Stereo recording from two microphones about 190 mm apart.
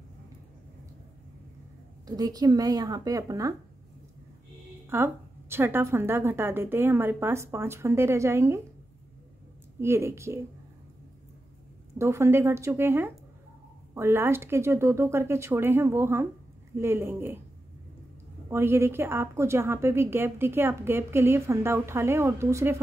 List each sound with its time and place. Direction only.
2.0 s speech: 20° right (ahead or behind)
4.8 s a woman's voice: 10° right (ahead or behind)
9.8 s a woman's voice: 15° right (ahead or behind)
12.0 s a woman's voice: 15° right (ahead or behind)
18.5 s a woman's voice: 10° right (ahead or behind)